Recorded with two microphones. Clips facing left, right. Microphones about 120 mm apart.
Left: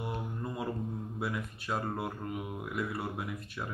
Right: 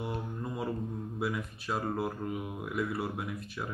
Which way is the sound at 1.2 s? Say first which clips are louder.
Right 3 dB; centre (ahead or behind).